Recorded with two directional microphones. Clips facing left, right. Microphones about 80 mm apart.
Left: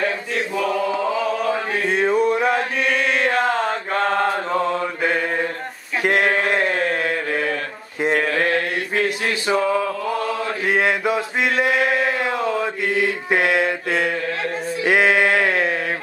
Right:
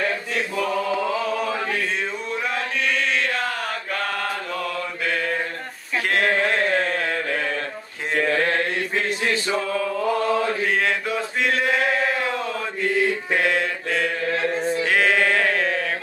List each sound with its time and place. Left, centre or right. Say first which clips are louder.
1.9 s music: left 10 dB; left
2.5 s chant: left 4 dB; left
3.2 s mantra: left 6 dB; left
10.7 s mantra: left 4 dB; centre
13.3 s mantra: left 3 dB; left
14.9 s a sound: left 5 dB; centre